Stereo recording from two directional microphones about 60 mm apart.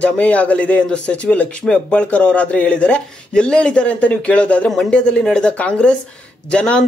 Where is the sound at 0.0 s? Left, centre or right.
Left.